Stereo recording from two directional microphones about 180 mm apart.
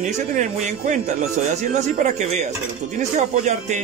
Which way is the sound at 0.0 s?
45° right (ahead or behind).